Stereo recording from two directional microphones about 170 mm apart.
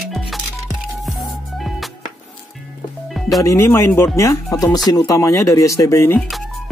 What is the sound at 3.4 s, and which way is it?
Speech, 15° left (ahead or behind).